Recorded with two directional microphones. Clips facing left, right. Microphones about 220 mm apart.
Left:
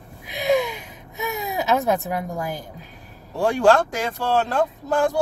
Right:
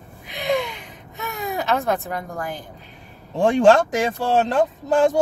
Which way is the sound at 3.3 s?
20° right (ahead or behind).